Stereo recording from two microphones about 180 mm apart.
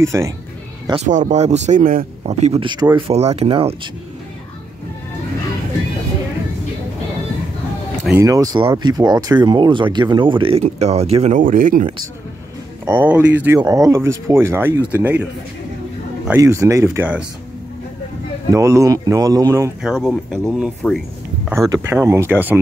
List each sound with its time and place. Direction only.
0.0 s speech: 15° right (ahead or behind)
1.0 s speech: 45° right (ahead or behind)
2.2 s speech: 35° right (ahead or behind)
8.1 s speech: 15° right (ahead or behind); by 11.9 s 50° right (ahead or behind)
12.8 s speech: 10° right (ahead or behind)
16.3 s speech: 15° right (ahead or behind)
18.5 s speech: 15° right (ahead or behind)
19.8 s speech: 5° right (ahead or behind)
21.5 s speech: 15° right (ahead or behind)